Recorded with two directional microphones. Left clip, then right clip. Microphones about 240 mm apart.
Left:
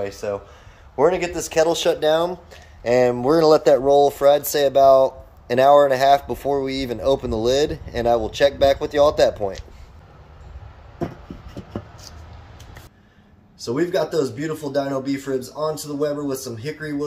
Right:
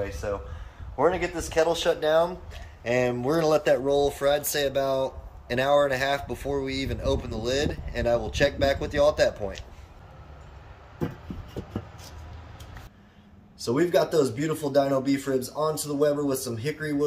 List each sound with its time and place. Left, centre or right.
0.1 s speech: left
2.8 s speech: left
13.6 s speech: centre